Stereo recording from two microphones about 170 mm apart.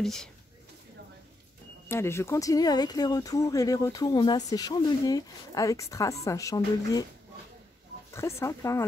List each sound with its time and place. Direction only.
0.0 s speech: 5° left (ahead or behind)
1.9 s speech: 15° left (ahead or behind)
8.1 s speech: 15° left (ahead or behind)